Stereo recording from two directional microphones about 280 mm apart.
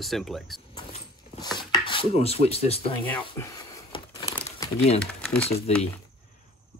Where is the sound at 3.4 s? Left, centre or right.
Centre.